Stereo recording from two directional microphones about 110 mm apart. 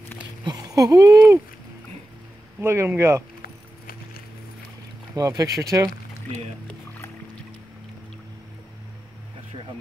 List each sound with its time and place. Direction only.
0.5 s a sound: 35° right (ahead or behind)
2.6 s speech: 25° right (ahead or behind)
5.1 s speech: 35° right (ahead or behind)